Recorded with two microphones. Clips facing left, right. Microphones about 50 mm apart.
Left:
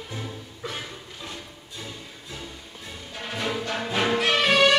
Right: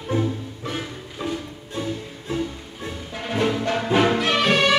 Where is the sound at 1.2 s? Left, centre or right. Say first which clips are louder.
Right 14 dB; right.